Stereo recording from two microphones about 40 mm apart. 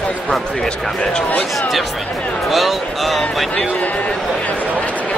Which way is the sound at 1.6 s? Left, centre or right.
Centre.